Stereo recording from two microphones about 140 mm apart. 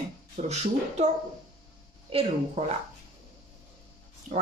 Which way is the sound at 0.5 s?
55° right (ahead or behind).